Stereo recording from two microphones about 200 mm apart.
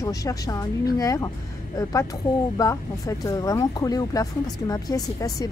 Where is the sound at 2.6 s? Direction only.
15° left (ahead or behind).